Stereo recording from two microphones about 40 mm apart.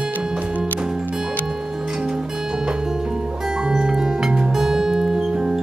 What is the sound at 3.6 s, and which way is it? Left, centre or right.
Music, centre.